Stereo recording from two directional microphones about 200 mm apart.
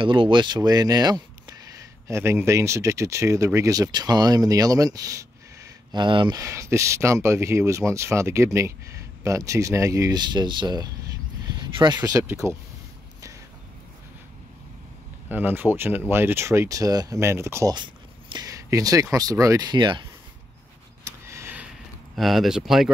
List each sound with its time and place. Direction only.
0.0 s speech: 25° right (ahead or behind)
15.2 s speech: 10° right (ahead or behind)
21.0 s a sound: 15° right (ahead or behind)
22.1 s speech: centre (ahead or behind)